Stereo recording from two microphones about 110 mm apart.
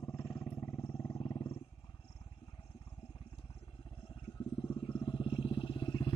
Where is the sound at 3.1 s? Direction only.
60° left (ahead or behind); by 6.1 s 45° left (ahead or behind).